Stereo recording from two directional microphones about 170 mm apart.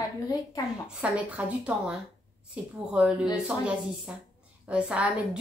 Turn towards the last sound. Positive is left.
turn(degrees=-5)  # may be behind; listen again after turning